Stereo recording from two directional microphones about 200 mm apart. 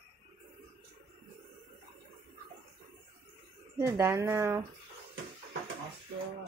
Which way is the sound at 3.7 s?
15° right (ahead or behind).